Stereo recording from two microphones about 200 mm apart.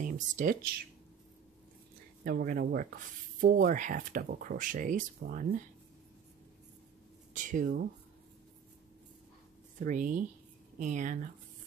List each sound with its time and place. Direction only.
0.0 s speech: 40° right (ahead or behind)
2.2 s speech: 45° right (ahead or behind)
7.3 s speech: 40° right (ahead or behind)
9.8 s speech: 40° right (ahead or behind)